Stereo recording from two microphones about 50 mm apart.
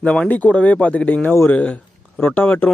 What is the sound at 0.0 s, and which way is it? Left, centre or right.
Speech, left.